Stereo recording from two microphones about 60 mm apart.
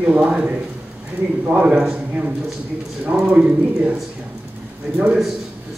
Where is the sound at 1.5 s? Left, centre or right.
Centre.